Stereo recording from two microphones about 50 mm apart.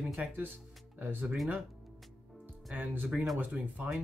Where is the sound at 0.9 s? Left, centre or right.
Right.